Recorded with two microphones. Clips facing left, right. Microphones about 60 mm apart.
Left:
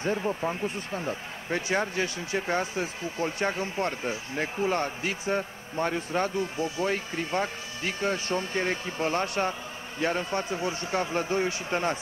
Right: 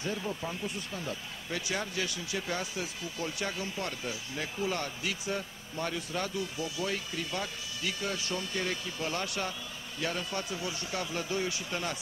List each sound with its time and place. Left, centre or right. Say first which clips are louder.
0.0 s speech: left 7 dB; left